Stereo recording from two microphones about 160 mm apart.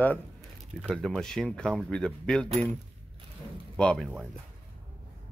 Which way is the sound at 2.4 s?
40° right (ahead or behind).